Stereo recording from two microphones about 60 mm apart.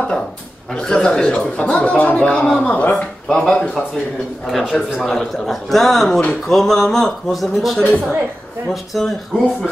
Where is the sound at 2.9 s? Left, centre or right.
Centre.